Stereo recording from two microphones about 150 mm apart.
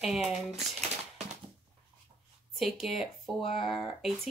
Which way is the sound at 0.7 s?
45° right (ahead or behind).